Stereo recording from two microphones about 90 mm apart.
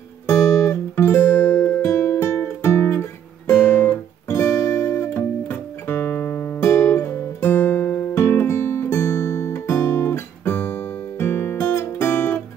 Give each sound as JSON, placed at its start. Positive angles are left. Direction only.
{"t": 0.6, "sound": "music", "side_deg": 30}
{"t": 2.6, "sound": "guitar", "side_deg": 25}
{"t": 4.3, "sound": "music", "side_deg": 30}
{"t": 7.4, "sound": "music", "side_deg": 20}
{"t": 8.1, "sound": "music", "side_deg": 30}